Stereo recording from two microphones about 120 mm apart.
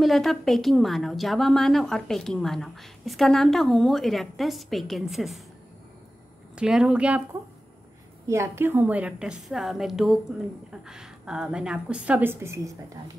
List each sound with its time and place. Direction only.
0.0 s a woman's voice: centre (ahead or behind)
6.5 s a woman's voice: 5° right (ahead or behind)
8.3 s a woman's voice: 20° right (ahead or behind)